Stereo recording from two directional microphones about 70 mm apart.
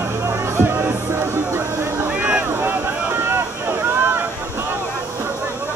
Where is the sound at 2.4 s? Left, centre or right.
Right.